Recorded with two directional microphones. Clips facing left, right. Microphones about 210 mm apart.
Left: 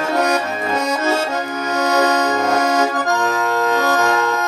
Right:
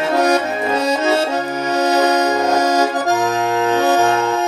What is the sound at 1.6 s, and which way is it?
Music, 30° right (ahead or behind).